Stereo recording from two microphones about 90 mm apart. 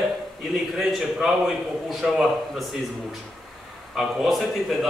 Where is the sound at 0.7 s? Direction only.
Centre (ahead or behind).